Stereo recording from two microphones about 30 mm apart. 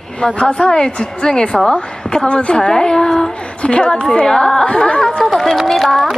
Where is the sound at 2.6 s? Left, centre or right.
Left.